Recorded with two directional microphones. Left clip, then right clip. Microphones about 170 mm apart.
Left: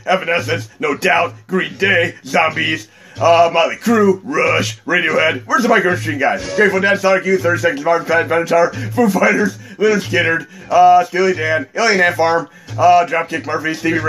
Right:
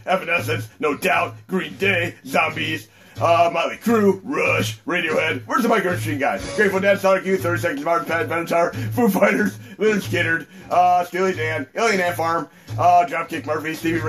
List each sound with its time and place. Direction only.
0.0 s a man's voice: 35° left (ahead or behind)